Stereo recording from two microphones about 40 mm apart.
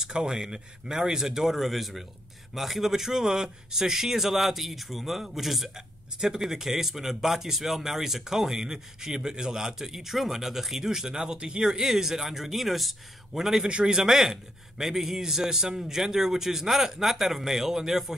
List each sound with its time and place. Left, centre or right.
0.0 s a man's voice: centre
13.7 s a man's voice: right
13.9 s a man's voice: centre